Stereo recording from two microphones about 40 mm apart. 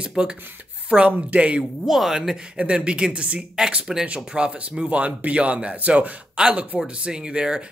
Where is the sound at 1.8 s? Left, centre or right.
Centre.